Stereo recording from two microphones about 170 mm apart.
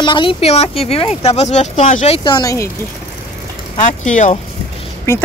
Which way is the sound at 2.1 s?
25° left (ahead or behind).